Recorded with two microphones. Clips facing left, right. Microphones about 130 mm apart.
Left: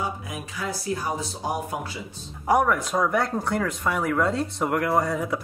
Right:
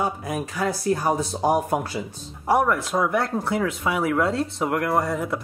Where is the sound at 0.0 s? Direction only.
50° right (ahead or behind).